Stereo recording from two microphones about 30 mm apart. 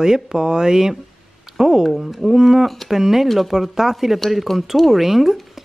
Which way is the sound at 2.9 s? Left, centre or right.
Centre.